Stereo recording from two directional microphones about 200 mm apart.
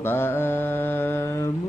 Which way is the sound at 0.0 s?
10° left (ahead or behind).